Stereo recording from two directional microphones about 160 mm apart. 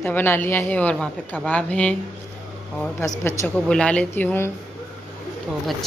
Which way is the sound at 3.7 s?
5° left (ahead or behind).